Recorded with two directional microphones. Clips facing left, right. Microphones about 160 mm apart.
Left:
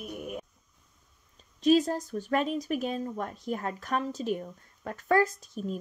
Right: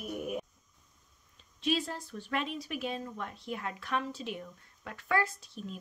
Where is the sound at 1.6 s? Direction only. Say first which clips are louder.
Left 9 dB; 40° left (ahead or behind).